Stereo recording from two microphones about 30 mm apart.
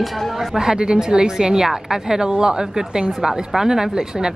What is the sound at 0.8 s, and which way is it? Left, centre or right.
A woman's voice, right.